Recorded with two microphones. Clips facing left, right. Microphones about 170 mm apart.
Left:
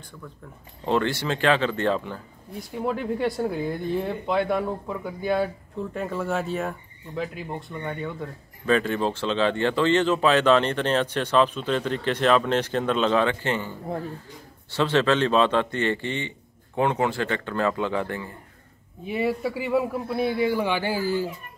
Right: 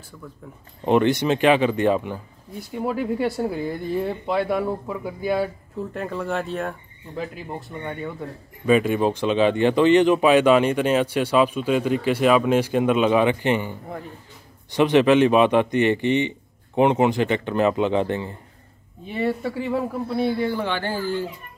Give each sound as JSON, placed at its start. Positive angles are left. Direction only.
{"t": 0.8, "sound": "speech", "side_deg": -15}
{"t": 2.5, "sound": "speech", "side_deg": 0}
{"t": 19.0, "sound": "speech", "side_deg": 5}